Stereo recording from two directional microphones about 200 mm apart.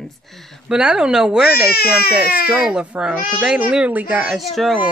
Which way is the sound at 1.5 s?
50° left (ahead or behind).